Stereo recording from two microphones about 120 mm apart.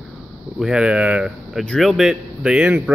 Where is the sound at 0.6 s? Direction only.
5° right (ahead or behind).